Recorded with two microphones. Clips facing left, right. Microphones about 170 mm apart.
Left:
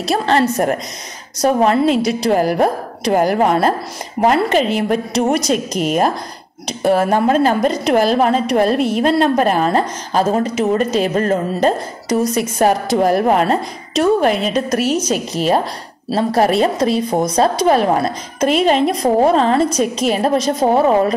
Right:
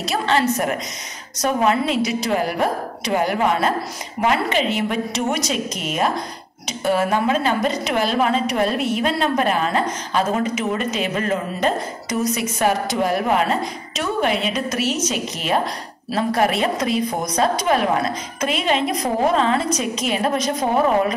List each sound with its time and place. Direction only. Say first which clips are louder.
0.0 s speech: left 4 dB; 40° left (ahead or behind)